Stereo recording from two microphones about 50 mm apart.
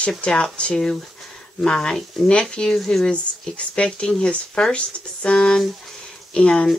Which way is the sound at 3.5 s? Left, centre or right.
Left.